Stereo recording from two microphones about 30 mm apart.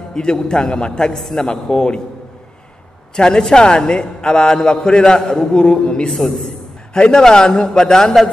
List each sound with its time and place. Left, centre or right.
0.1 s a man's voice: left
1.1 s a man's voice: centre
1.4 s a man's voice: left
3.2 s a man's voice: left
6.1 s a man's voice: centre
7.2 s a man's voice: left